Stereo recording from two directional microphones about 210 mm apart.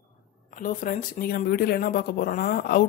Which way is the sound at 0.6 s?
40° left (ahead or behind).